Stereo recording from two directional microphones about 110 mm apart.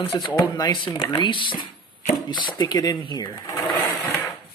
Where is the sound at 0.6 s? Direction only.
35° left (ahead or behind).